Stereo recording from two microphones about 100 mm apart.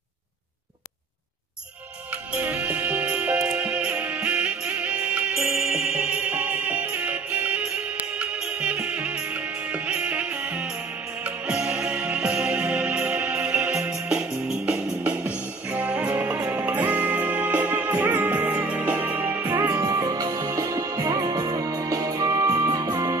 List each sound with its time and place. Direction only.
2.4 s music: 15° right (ahead or behind)
15.7 s music: 10° right (ahead or behind); by 23.1 s 40° right (ahead or behind)